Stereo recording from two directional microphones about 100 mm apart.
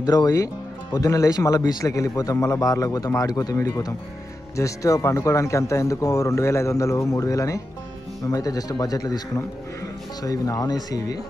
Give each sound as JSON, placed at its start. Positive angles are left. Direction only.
{"t": 0.0, "sound": "speech", "side_deg": 40}